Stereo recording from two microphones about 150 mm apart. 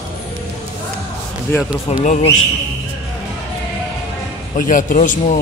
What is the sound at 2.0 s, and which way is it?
Speech, 50° left (ahead or behind).